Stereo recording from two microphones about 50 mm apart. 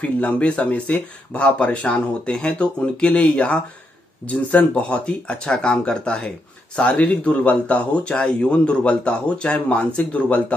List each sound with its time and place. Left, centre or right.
0.0 s speech: left
6.8 s speech: left